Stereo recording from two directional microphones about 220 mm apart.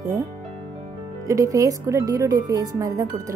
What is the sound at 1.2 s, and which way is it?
Speech, 15° right (ahead or behind).